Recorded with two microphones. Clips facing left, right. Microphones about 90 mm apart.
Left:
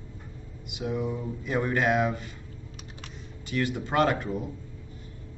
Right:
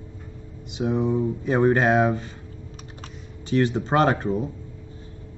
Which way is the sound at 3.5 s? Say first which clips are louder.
Right 6 dB; 30° right (ahead or behind).